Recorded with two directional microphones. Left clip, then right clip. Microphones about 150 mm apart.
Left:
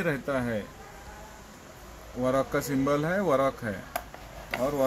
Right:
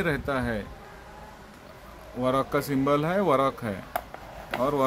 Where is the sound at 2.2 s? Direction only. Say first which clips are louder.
Right 1 dB; 10° right (ahead or behind).